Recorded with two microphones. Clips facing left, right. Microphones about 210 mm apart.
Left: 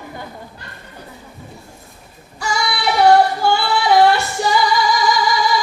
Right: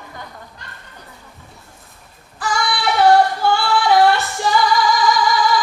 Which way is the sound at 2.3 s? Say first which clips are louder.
Even; centre (ahead or behind).